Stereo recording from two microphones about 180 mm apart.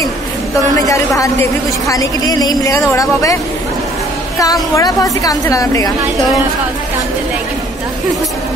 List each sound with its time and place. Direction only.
0.8 s a woman's voice: 20° left (ahead or behind)
4.7 s a woman's voice: 20° left (ahead or behind)